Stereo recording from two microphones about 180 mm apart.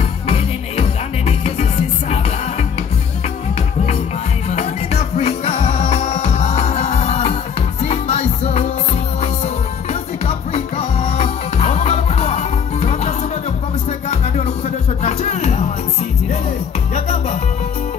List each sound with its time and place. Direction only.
0.3 s music: 35° left (ahead or behind)
4.5 s music: 35° left (ahead or behind)
10.2 s music: 35° left (ahead or behind)
16.9 s music: 35° left (ahead or behind)